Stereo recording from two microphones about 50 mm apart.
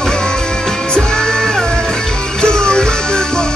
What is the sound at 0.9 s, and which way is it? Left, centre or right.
Music, centre.